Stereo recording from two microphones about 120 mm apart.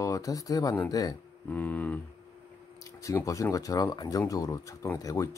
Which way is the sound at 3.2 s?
25° left (ahead or behind).